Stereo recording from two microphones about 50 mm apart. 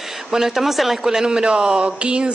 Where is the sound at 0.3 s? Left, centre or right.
Centre.